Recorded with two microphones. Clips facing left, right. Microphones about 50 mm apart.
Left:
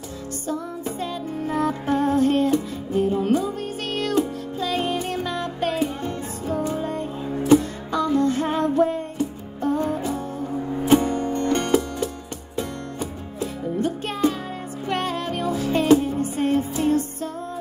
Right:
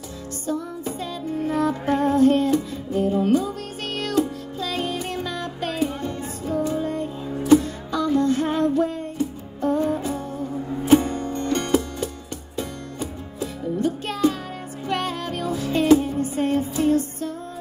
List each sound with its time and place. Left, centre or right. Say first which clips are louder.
1.4 s music: right 1 dB; left
1.9 s music: even; right
2.1 s music: right 3 dB; left
4.6 s music: left 3 dB; left